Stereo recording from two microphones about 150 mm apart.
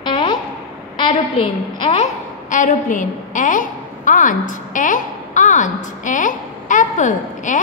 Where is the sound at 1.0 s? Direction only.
35° left (ahead or behind).